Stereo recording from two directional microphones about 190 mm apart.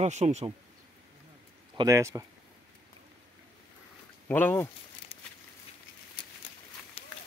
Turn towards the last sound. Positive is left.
turn(degrees=35)  # may be behind; listen again after turning